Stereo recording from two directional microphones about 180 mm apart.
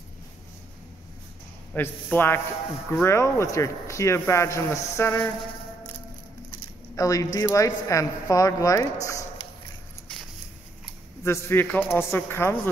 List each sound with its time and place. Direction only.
1.7 s speech: 10° left (ahead or behind)
7.0 s speech: 20° left (ahead or behind)
11.2 s speech: 10° left (ahead or behind)